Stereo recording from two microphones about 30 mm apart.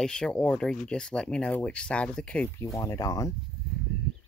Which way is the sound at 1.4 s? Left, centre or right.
Left.